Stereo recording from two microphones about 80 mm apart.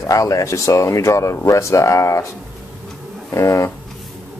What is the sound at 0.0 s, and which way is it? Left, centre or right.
Speech, left.